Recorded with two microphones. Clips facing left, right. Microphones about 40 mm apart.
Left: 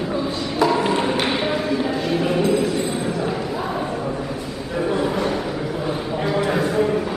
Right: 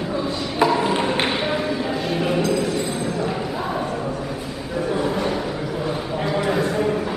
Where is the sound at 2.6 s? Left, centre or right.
Centre.